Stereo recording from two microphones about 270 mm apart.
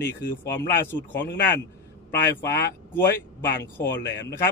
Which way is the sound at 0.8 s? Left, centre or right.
Centre.